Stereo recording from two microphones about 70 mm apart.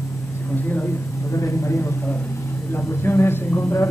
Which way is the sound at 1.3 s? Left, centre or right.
Left.